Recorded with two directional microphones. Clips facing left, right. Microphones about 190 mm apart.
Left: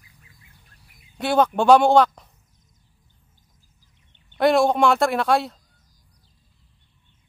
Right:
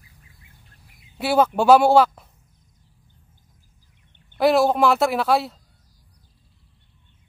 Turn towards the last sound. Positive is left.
turn(degrees=-5)  # may be behind; listen again after turning